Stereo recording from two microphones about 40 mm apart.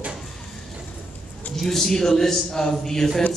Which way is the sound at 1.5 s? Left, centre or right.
Centre.